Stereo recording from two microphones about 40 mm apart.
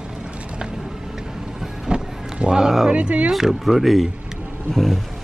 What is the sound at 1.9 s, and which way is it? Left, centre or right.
Vehicle, right.